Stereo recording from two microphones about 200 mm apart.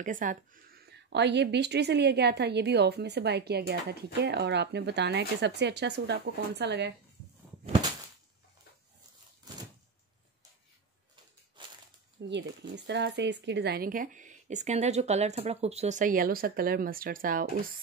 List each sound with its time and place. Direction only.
0.0 s speech: 40° right (ahead or behind); by 6.9 s 60° right (ahead or behind)
12.2 s speech: 60° right (ahead or behind); by 17.5 s 45° right (ahead or behind)